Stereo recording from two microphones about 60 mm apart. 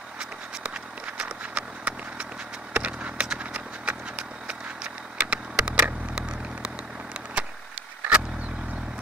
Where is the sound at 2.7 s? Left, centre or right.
Right.